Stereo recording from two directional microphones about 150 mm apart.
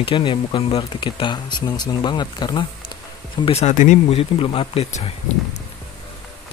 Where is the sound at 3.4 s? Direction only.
45° left (ahead or behind).